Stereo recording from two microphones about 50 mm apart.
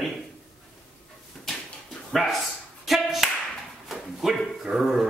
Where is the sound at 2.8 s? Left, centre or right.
Centre.